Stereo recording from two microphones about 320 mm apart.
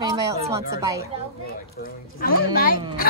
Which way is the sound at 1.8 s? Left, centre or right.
Left.